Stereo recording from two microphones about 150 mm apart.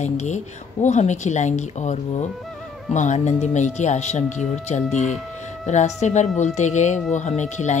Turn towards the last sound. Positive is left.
turn(degrees=50)  # may be behind; listen again after turning